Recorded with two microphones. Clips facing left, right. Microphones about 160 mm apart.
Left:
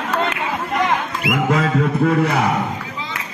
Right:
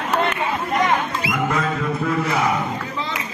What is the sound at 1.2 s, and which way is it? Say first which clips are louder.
Music: left 4 dB; 75° left (ahead or behind).